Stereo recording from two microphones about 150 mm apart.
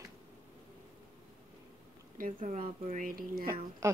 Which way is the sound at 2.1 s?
60° right (ahead or behind).